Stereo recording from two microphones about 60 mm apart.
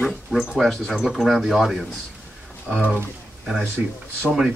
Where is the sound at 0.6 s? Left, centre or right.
Centre.